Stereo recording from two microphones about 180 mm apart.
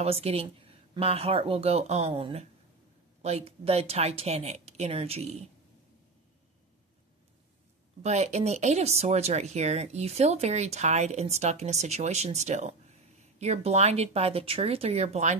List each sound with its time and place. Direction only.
0.0 s speech: 35° right (ahead or behind)
8.0 s speech: 40° right (ahead or behind)